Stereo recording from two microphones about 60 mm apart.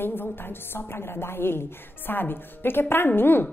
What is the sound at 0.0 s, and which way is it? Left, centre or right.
A woman's voice, left.